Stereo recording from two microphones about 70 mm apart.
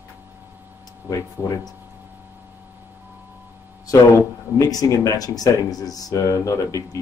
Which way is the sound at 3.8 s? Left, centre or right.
Left.